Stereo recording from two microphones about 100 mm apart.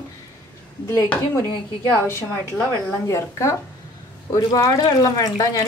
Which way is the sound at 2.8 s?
30° left (ahead or behind).